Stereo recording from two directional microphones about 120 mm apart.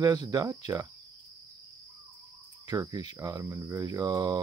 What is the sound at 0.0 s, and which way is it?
Speech, 35° right (ahead or behind).